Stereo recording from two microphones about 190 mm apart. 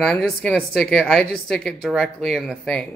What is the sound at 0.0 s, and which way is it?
A woman's voice, 5° left (ahead or behind).